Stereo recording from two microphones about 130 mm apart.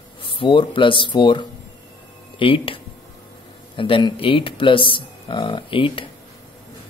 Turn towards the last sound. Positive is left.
turn(degrees=40)  # may be behind; listen again after turning